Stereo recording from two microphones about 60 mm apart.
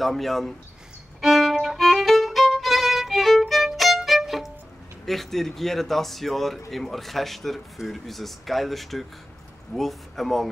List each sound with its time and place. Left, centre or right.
0.0 s speech: centre
1.2 s violin: centre
5.0 s speech: centre